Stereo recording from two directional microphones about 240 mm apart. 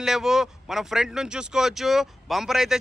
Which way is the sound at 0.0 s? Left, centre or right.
Centre.